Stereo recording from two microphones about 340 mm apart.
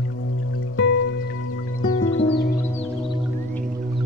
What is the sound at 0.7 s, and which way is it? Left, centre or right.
Music, left.